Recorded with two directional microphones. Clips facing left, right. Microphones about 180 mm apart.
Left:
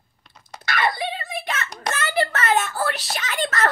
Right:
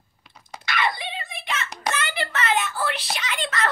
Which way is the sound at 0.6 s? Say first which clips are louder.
Left 3 dB; 45° left (ahead or behind).